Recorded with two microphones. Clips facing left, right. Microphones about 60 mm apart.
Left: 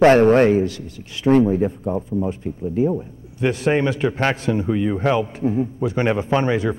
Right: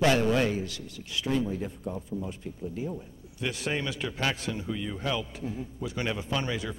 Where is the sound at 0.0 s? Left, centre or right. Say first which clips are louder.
Left 12 dB; left.